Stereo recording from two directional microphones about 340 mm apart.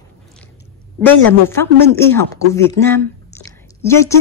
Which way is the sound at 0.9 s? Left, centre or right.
Centre.